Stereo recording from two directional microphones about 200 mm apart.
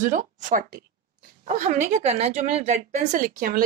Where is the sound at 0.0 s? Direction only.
40° right (ahead or behind).